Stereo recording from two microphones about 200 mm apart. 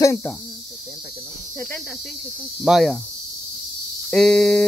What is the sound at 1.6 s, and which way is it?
Speech, 5° left (ahead or behind).